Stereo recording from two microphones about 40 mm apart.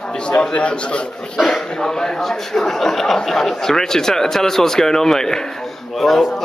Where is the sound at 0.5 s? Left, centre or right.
Left.